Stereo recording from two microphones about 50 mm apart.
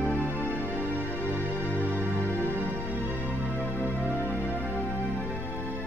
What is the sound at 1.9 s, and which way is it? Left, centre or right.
Music, right.